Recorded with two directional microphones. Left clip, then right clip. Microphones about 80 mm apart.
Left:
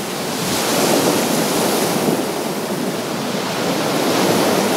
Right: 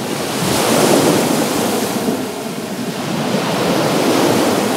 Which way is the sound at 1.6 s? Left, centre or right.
Centre.